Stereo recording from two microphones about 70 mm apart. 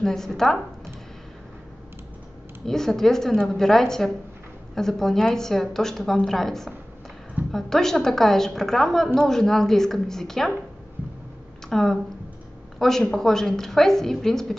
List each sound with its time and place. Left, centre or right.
0.0 s a woman's voice: centre
2.6 s a woman's voice: centre
11.7 s a woman's voice: centre